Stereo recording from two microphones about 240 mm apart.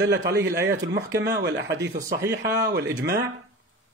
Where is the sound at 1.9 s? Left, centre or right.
Right.